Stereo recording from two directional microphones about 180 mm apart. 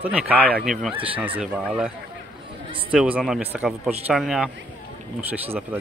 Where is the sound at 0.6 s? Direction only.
Centre (ahead or behind).